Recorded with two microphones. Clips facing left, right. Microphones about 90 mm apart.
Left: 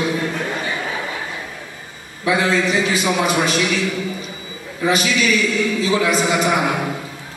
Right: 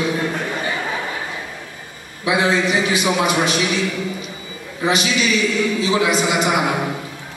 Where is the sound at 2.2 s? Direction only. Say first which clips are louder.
Even; 15° right (ahead or behind).